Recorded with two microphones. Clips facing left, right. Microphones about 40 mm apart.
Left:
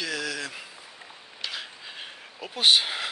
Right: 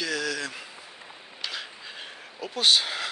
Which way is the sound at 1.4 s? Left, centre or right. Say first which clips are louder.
Even; centre.